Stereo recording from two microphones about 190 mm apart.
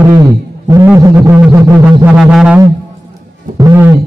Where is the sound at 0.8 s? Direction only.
15° right (ahead or behind).